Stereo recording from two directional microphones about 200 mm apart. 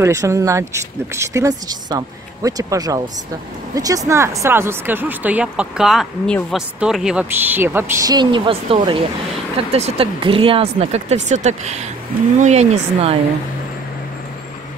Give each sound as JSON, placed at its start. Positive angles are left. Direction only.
{"t": 0.0, "sound": "speech", "side_deg": -15}